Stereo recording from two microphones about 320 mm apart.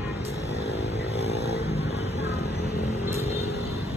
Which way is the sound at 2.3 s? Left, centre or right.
Centre.